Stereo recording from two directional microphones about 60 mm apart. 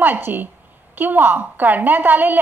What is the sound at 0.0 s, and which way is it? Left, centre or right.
A woman's voice, right.